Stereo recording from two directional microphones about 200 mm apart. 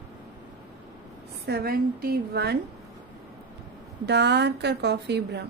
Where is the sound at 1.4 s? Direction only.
50° right (ahead or behind).